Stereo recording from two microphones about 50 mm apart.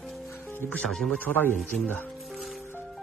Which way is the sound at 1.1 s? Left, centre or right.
Left.